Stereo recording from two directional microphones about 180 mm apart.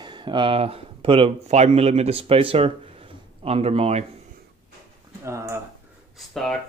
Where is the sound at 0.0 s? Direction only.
25° right (ahead or behind).